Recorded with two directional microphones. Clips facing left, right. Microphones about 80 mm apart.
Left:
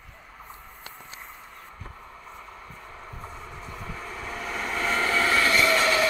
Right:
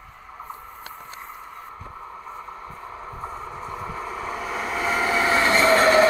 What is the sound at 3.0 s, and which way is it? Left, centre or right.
Vehicle, right.